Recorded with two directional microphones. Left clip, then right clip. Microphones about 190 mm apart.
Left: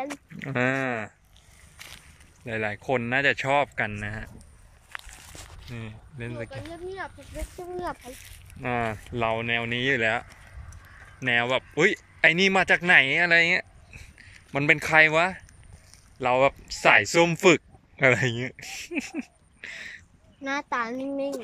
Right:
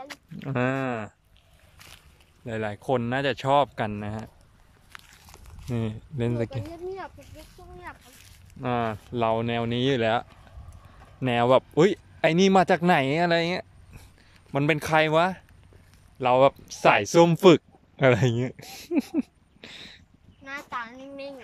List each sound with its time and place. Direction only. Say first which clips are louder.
0.4 s speech: left 1 dB; 10° right (ahead or behind)
1.8 s a sound: left 5 dB; 5° right (ahead or behind)
2.4 s speech: left 1 dB; 10° right (ahead or behind)
5.7 s speech: right 12 dB; 25° right (ahead or behind)
6.6 s speech: even; 5° right (ahead or behind)
8.5 s speech: right 1 dB; 10° right (ahead or behind)
20.4 s a child's voice: left 6 dB; 60° left (ahead or behind)